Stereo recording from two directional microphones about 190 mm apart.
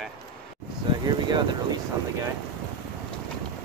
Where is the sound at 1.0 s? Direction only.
20° right (ahead or behind).